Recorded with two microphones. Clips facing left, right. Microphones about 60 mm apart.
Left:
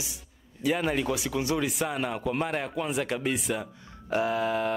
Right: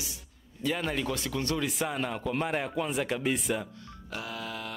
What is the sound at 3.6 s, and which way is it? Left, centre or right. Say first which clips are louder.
Speech: right 2 dB; centre.